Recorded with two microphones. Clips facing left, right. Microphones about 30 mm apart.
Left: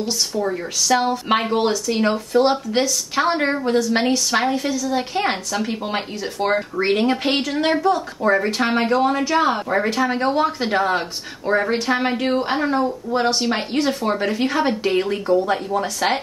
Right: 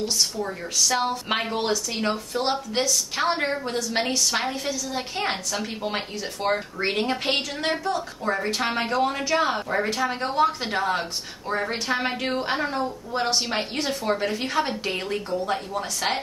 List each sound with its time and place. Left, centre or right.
0.7 s a woman's voice: centre
8.2 s speech: centre
8.5 s a woman's voice: centre
11.4 s speech: centre
11.7 s a woman's voice: centre